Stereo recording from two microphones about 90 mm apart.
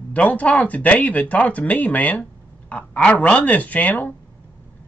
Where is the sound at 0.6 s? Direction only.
15° left (ahead or behind).